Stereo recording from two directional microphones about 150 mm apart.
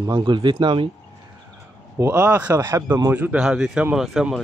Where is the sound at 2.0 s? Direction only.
10° right (ahead or behind).